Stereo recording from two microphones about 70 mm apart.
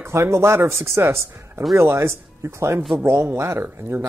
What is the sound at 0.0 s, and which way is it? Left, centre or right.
Speech, right.